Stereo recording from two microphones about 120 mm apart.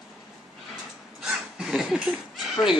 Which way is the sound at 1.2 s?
5° right (ahead or behind).